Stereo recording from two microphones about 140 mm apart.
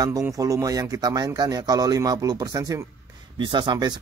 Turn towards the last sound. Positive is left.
turn(degrees=-30)  # may be behind; listen again after turning